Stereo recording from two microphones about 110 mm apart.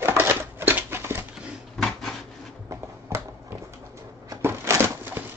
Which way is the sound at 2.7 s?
25° right (ahead or behind).